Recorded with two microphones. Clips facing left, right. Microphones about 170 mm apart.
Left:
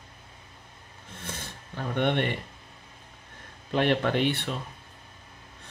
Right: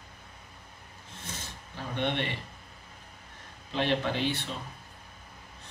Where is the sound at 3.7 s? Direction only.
55° left (ahead or behind).